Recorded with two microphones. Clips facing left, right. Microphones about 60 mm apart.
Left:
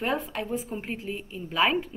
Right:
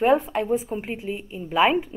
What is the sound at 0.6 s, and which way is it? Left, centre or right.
A woman's voice, centre.